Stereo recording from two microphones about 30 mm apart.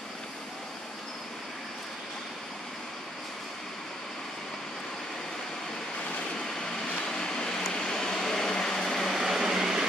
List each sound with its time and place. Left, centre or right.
6.9 s vehicle: left
8.0 s vehicle: centre
9.0 s vehicle: centre
9.4 s a sound: centre